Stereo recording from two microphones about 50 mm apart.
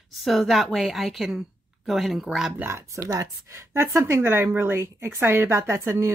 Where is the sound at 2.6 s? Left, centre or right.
Right.